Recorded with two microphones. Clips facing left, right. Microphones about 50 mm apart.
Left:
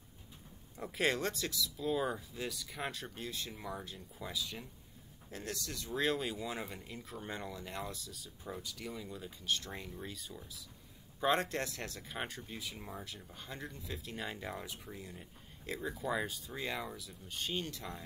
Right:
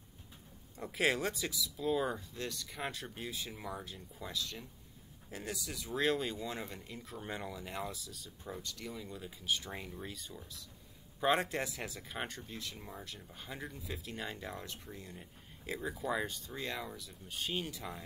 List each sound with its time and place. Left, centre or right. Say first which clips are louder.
0.7 s speech: right 1 dB; centre
5.3 s speech: even; centre